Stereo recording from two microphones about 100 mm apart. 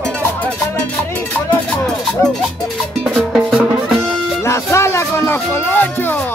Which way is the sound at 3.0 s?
5° right (ahead or behind).